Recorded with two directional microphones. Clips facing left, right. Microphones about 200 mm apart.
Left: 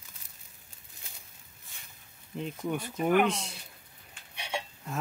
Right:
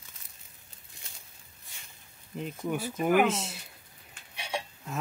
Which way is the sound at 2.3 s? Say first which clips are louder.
Even; 5° right (ahead or behind).